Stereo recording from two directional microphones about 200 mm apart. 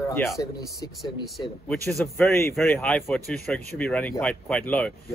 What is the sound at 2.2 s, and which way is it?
A man's voice, 10° left (ahead or behind).